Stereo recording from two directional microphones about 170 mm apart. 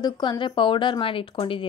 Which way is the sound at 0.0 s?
25° left (ahead or behind).